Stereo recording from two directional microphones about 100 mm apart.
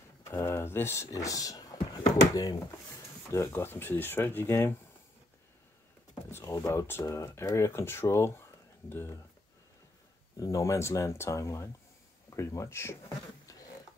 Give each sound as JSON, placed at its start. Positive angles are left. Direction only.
{"t": 0.2, "sound": "speech", "side_deg": 25}
{"t": 6.3, "sound": "speech", "side_deg": 30}
{"t": 10.4, "sound": "speech", "side_deg": 30}
{"t": 13.5, "sound": "a sound", "side_deg": 35}